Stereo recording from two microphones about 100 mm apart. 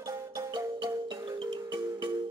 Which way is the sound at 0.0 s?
50° right (ahead or behind).